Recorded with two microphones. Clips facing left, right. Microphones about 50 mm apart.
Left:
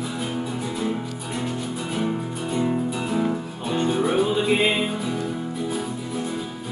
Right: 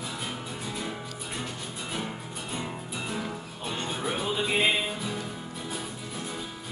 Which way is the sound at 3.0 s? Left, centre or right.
Centre.